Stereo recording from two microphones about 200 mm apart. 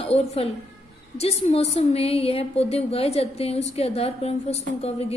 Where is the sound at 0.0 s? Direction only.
30° left (ahead or behind).